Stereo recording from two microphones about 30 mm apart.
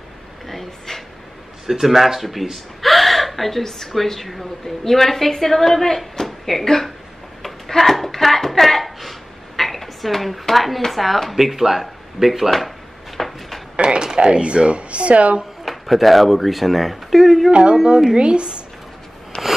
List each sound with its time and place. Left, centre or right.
0.5 s a sound: centre
1.7 s a man's voice: centre
2.8 s gasp: centre
3.6 s a woman's voice: centre
7.4 s a sound: centre
9.6 s dishes: centre
10.4 s a man's voice: centre
13.2 s a sound: centre
13.8 s speech: right
15.6 s speech: centre
17.5 s speech: right
19.3 s rub: left